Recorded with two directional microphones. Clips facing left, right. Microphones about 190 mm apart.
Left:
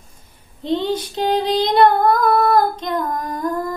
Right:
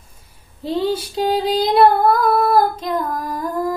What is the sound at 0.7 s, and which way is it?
Female singing, 5° right (ahead or behind).